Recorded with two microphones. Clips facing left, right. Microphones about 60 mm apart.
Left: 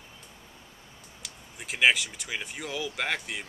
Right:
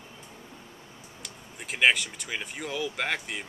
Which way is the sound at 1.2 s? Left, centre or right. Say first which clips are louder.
Right 1 dB; centre.